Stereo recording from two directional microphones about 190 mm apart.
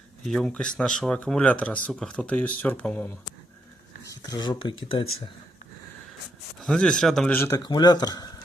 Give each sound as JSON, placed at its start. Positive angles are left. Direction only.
{"t": 0.3, "sound": "speech", "side_deg": 5}
{"t": 6.6, "sound": "speech", "side_deg": 5}